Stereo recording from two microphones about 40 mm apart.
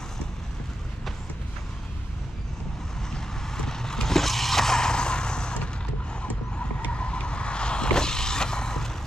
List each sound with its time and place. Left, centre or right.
3.1 s vehicle: centre
6.9 s vehicle: left